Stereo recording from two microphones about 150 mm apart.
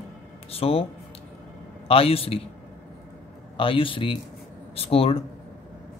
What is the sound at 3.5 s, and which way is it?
Speech, 35° left (ahead or behind).